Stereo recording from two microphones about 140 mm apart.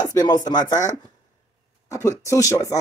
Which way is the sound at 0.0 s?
30° left (ahead or behind).